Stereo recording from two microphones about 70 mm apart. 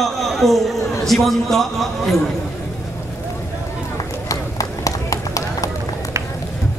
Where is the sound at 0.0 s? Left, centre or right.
Centre.